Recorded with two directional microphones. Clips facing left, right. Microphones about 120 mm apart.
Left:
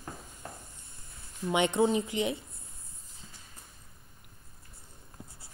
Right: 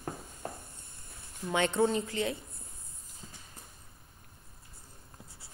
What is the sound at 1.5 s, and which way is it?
Speech, 15° left (ahead or behind).